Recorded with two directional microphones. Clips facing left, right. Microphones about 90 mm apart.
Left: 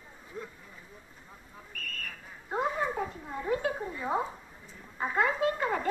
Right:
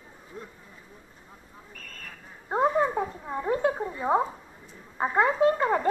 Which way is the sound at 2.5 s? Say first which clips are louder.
Right 7 dB; 35° right (ahead or behind).